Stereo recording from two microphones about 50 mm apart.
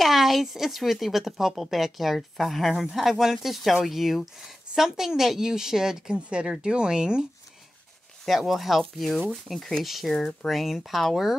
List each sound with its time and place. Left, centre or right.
0.0 s a woman's voice: centre
8.3 s speech: centre